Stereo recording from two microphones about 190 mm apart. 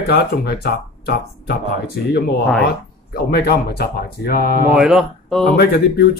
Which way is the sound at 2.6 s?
55° left (ahead or behind).